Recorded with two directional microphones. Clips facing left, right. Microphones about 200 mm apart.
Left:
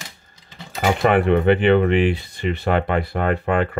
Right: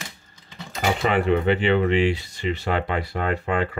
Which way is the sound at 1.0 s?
60° left (ahead or behind).